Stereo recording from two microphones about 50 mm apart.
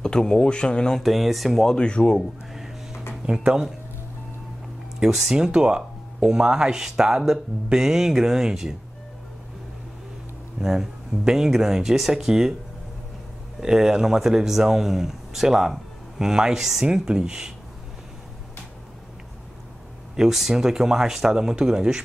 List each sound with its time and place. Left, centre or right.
0.0 s speech: centre
0.9 s speech: centre
1.7 s speech: centre
3.2 s speech: right
5.0 s speech: centre
10.6 s speech: centre
13.6 s speech: centre
20.2 s speech: centre